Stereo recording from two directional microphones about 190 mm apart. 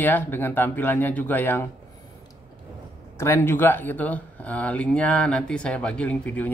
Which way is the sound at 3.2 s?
10° left (ahead or behind).